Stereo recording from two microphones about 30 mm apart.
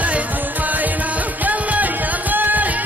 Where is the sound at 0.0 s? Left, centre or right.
Right.